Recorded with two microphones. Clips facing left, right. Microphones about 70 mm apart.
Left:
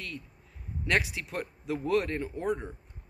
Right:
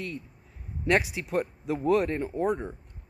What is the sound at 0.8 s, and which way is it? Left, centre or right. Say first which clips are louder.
Speech: right 4 dB; centre.